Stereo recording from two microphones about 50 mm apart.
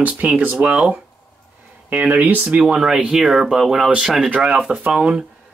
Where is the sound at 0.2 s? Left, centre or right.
Right.